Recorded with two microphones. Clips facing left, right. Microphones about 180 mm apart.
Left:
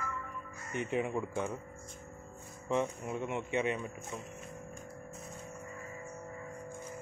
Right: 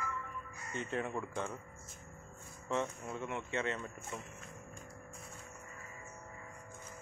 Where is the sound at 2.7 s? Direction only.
15° left (ahead or behind).